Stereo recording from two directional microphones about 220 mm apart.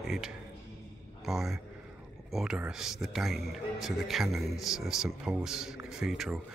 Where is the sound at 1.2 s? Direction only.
Centre (ahead or behind).